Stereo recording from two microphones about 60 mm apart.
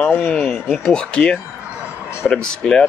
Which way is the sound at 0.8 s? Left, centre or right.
Centre.